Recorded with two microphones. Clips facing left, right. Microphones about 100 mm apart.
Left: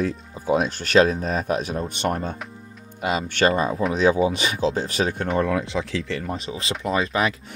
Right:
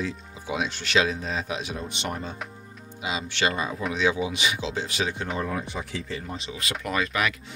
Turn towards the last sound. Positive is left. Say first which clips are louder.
# left 4 dB
turn(degrees=30)  # may be behind; listen again after turning